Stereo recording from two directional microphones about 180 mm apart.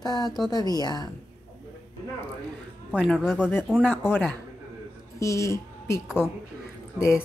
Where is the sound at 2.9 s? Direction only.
5° right (ahead or behind).